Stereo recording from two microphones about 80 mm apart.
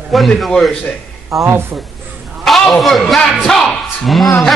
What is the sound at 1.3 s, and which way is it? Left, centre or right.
Speech, right.